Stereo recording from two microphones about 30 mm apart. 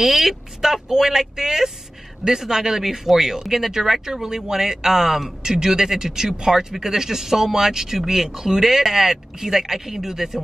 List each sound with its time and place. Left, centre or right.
0.0 s speech: centre